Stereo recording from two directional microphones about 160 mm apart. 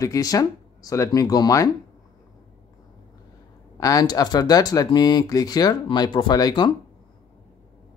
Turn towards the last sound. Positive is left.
turn(degrees=25)  # may be behind; listen again after turning